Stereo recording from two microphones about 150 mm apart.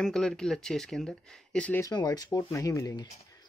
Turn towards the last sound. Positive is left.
turn(degrees=25)  # may be behind; listen again after turning